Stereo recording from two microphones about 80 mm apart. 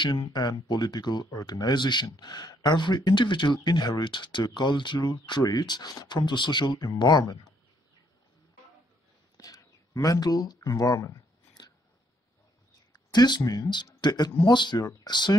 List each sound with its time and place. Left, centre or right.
0.2 s speech: left
1.3 s speech: left
4.0 s speech: left
5.4 s speech: left
9.4 s speech: left
11.6 s chewing: left
12.9 s speech: left